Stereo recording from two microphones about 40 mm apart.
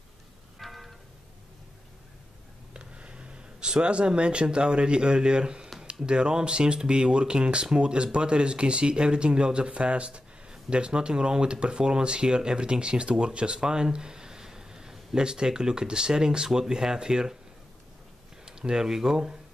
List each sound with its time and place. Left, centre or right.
0.6 s vehicle: centre
2.7 s speech: right
18.4 s speech: centre